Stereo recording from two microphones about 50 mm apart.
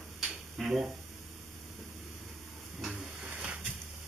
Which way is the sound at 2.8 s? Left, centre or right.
Centre.